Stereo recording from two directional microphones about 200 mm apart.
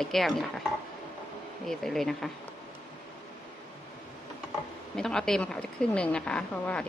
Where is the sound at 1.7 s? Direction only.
Centre (ahead or behind).